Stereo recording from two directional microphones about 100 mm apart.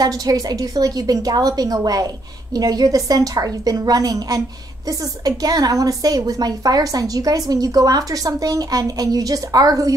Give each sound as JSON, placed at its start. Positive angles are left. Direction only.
{"t": 0.0, "sound": "a woman's voice", "side_deg": -40}